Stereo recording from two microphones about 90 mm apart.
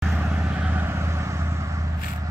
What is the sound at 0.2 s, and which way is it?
Vehicle, 15° right (ahead or behind).